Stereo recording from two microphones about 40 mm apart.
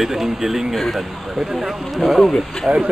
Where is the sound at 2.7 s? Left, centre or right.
Right.